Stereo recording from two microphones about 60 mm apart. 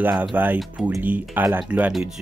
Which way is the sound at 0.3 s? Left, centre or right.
Right.